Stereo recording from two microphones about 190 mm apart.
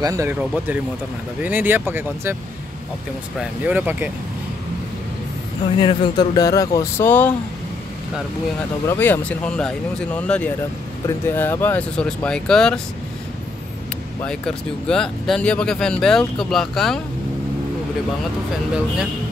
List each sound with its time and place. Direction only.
0.0 s speech: 15° right (ahead or behind)
1.4 s speech: 10° right (ahead or behind)
3.3 s speech: 10° right (ahead or behind)
5.8 s speech: 25° left (ahead or behind); by 7.3 s 10° left (ahead or behind)
8.8 s speech: 10° left (ahead or behind)
14.2 s speech: 5° left (ahead or behind)